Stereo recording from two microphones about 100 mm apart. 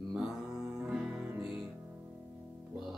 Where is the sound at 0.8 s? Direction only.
5° right (ahead or behind).